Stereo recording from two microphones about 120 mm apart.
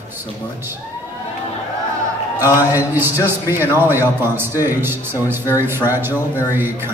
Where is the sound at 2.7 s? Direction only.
15° right (ahead or behind).